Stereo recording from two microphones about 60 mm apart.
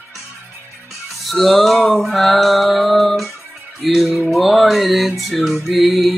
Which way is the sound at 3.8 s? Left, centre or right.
Centre.